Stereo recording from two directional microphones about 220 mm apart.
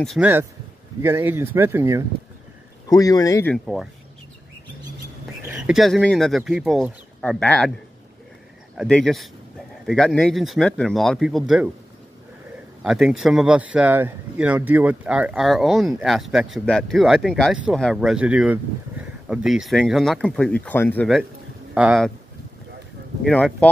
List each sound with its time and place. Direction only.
0.0 s speech: centre (ahead or behind)
1.0 s speech: 10° right (ahead or behind)
2.9 s speech: 15° left (ahead or behind)
3.5 s speech: centre (ahead or behind)
5.5 s speech: centre (ahead or behind)
8.7 s speech: 5° left (ahead or behind)
12.8 s speech: centre (ahead or behind)
23.2 s speech: 5° left (ahead or behind)